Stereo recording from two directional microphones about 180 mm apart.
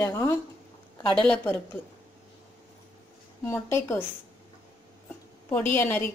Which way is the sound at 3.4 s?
15° left (ahead or behind).